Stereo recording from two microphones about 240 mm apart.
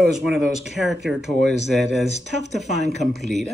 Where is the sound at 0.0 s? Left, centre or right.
Centre.